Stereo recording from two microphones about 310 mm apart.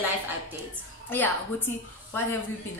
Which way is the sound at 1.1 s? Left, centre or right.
Centre.